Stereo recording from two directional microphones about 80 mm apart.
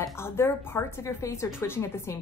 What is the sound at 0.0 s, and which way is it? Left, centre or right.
A woman's voice, left.